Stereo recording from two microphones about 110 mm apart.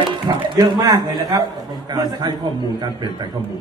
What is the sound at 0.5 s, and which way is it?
A man's voice, 40° right (ahead or behind).